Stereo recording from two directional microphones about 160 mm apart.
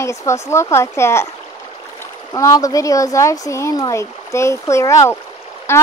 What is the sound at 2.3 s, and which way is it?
Speech, 20° left (ahead or behind).